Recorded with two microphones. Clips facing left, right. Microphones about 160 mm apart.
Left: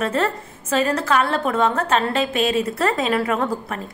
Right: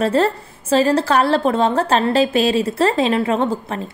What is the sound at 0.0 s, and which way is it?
A woman's voice, 30° right (ahead or behind).